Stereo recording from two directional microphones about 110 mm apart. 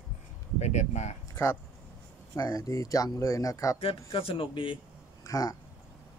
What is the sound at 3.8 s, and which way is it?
Speech, 60° left (ahead or behind).